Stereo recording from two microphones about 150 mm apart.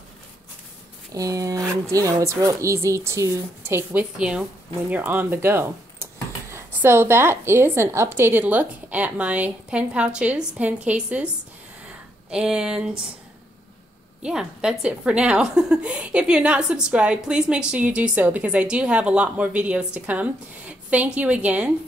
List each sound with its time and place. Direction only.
1.1 s a woman's voice: 25° right (ahead or behind)
12.3 s speech: 5° right (ahead or behind)
14.2 s a woman's voice: 5° right (ahead or behind)